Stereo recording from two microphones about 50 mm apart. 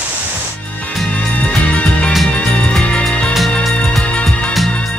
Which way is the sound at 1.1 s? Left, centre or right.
Left.